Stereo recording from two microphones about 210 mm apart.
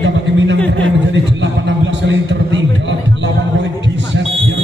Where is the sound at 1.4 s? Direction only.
60° right (ahead or behind).